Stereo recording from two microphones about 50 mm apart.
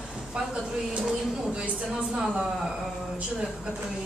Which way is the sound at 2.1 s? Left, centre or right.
Centre.